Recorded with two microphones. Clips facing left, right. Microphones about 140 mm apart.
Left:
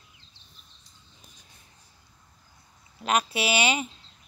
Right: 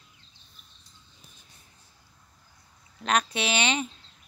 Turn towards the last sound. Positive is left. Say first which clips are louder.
# left 2 dB
turn(degrees=5)  # may be behind; listen again after turning